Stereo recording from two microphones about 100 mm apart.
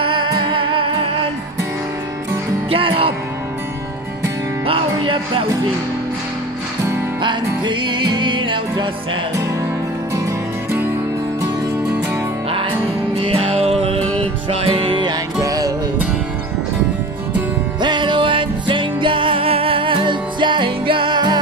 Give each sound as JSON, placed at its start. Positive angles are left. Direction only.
{"t": 0.0, "sound": "music", "side_deg": -60}
{"t": 2.7, "sound": "speech", "side_deg": -65}
{"t": 4.6, "sound": "music", "side_deg": -60}
{"t": 7.2, "sound": "music", "side_deg": -50}
{"t": 12.4, "sound": "music", "side_deg": -65}
{"t": 15.4, "sound": "music", "side_deg": -40}
{"t": 17.7, "sound": "music", "side_deg": -50}